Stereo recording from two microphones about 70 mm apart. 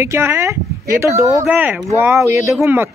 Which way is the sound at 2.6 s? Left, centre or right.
Right.